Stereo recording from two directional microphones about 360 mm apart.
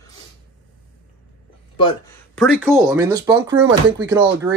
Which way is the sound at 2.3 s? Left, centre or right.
Centre.